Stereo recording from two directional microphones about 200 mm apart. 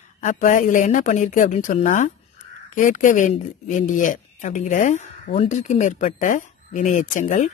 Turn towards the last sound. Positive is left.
turn(degrees=40)  # may be behind; listen again after turning